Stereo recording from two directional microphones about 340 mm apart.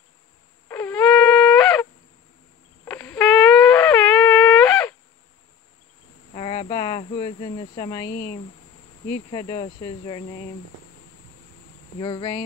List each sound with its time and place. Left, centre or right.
0.7 s wind instrument: centre
2.8 s a sound: centre
6.3 s cricket: centre
8.2 s speech: centre
12.0 s speech: centre